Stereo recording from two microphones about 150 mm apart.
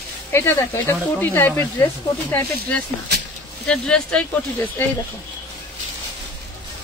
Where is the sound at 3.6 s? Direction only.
5° left (ahead or behind).